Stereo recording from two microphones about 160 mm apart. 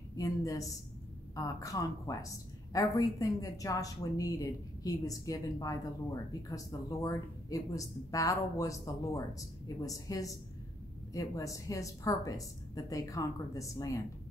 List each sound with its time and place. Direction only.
0.1 s a woman's voice: 20° left (ahead or behind)